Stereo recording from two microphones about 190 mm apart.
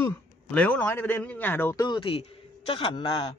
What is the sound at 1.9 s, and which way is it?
A man's voice, 30° left (ahead or behind).